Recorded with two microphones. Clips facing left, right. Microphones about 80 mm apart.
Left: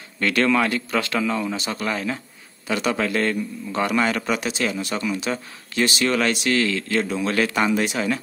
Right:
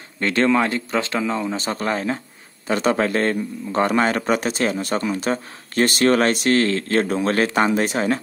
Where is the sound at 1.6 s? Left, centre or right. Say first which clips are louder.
Right 3 dB; right.